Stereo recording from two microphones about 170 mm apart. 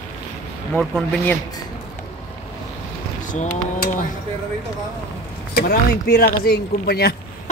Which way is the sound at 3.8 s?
50° left (ahead or behind).